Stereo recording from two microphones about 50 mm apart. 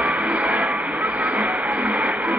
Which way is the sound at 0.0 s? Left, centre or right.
Right.